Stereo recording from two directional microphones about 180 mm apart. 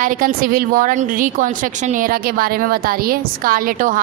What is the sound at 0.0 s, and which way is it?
A woman's voice, 50° right (ahead or behind).